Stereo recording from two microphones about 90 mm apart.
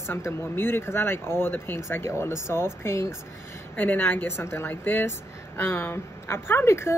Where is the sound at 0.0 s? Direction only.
30° left (ahead or behind).